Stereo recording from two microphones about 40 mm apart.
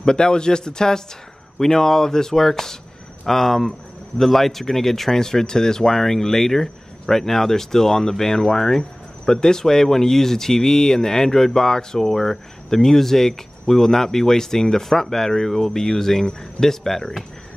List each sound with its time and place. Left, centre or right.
0.0 s speech: centre